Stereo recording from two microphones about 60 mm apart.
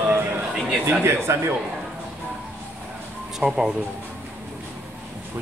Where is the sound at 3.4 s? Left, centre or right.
Centre.